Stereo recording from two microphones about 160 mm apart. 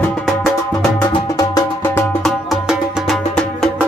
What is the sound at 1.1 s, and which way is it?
Music, 25° left (ahead or behind).